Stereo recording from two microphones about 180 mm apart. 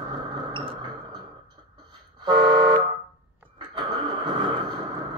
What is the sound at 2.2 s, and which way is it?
Vehicle, 25° right (ahead or behind).